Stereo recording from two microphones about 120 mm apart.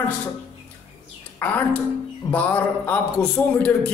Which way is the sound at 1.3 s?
15° left (ahead or behind).